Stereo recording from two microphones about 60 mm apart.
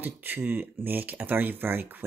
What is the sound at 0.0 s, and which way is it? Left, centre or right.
Speech, right.